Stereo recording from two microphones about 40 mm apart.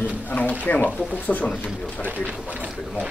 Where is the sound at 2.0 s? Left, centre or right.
Right.